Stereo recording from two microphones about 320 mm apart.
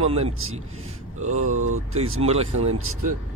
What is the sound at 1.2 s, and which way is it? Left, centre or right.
Speech, right.